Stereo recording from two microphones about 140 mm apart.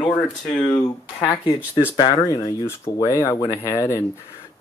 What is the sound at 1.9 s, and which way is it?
Speech, 25° left (ahead or behind).